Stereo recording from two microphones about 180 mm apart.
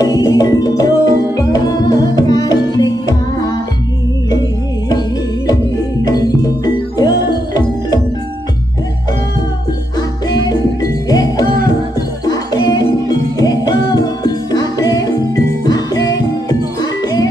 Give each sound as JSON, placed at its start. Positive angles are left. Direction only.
{"t": 0.0, "sound": "music", "side_deg": 20}
{"t": 6.0, "sound": "music", "side_deg": 20}
{"t": 9.9, "sound": "jingle bell", "side_deg": 20}
{"t": 12.3, "sound": "music", "side_deg": 20}